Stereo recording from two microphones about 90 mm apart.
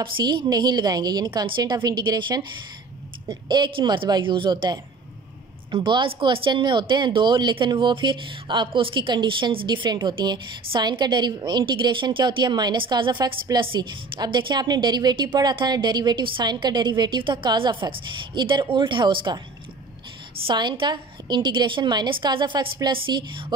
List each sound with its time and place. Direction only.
0.0 s speech: 60° right (ahead or behind)
1.6 s a woman's voice: 50° right (ahead or behind)
20.4 s a woman's voice: 65° right (ahead or behind)